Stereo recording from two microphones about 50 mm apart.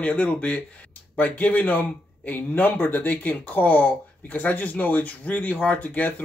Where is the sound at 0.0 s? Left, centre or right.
Left.